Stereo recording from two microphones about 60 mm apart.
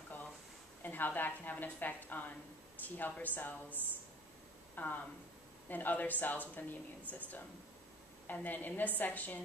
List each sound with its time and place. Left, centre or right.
0.8 s a woman's voice: left